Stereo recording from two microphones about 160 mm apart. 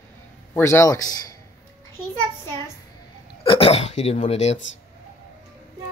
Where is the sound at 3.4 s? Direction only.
35° left (ahead or behind).